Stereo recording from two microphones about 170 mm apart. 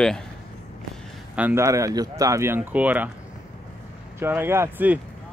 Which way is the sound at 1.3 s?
15° right (ahead or behind).